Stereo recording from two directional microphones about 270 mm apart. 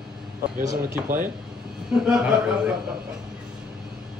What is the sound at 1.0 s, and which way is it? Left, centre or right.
Speech, right.